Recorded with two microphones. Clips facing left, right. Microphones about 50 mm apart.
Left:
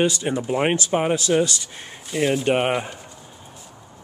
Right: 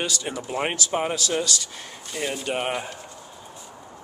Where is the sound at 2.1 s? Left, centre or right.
Centre.